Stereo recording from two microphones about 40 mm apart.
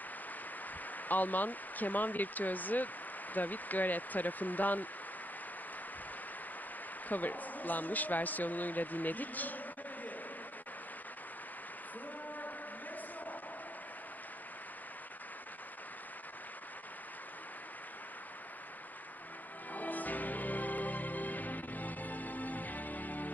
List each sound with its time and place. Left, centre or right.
1.0 s speech: left
7.1 s speech: left
19.7 s music: left